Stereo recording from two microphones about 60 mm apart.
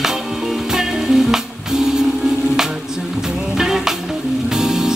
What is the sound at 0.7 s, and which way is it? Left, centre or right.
Music, centre.